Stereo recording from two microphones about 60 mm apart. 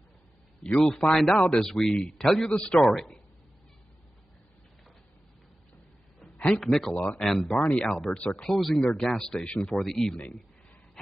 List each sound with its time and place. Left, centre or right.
0.7 s speech: centre
6.2 s a sound: centre
6.6 s speech: centre
7.5 s speech: centre
9.8 s speech: centre